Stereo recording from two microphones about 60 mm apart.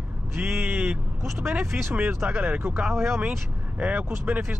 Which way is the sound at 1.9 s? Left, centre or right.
Right.